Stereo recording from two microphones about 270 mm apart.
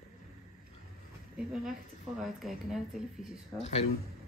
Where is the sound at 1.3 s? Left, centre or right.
Centre.